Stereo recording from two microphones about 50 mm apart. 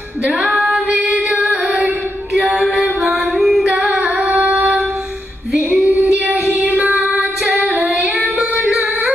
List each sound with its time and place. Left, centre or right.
0.4 s female singing: centre
1.3 s music: right
2.3 s music: centre
3.6 s female singing: right
6.5 s child singing: right
7.4 s female singing: right
8.6 s music: centre